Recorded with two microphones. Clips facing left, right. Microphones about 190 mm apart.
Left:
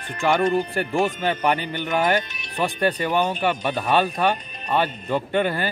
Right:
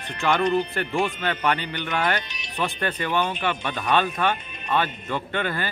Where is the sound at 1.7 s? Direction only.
50° left (ahead or behind).